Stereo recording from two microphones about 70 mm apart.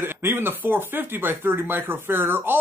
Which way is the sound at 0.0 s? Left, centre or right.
Right.